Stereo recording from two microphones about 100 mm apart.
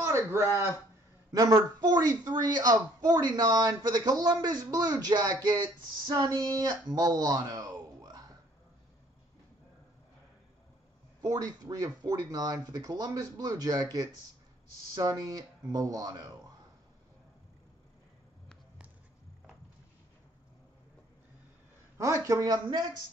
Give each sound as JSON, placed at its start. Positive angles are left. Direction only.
{"t": 0.0, "sound": "a sound", "side_deg": -25}
{"t": 1.3, "sound": "a man's voice", "side_deg": -40}
{"t": 11.2, "sound": "a man's voice", "side_deg": -40}
{"t": 21.9, "sound": "a man's voice", "side_deg": -30}